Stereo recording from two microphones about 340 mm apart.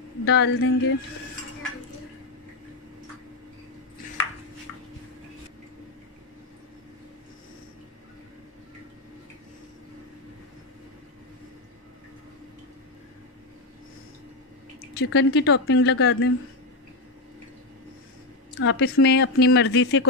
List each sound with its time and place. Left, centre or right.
0.2 s speech: left
15.0 s speech: left
18.6 s speech: left